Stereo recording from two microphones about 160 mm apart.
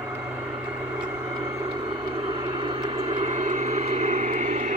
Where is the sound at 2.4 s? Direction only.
30° right (ahead or behind).